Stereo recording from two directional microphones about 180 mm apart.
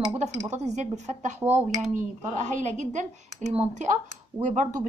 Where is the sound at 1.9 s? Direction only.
45° right (ahead or behind).